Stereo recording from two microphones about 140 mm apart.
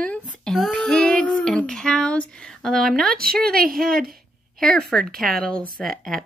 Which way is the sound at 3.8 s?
Centre (ahead or behind).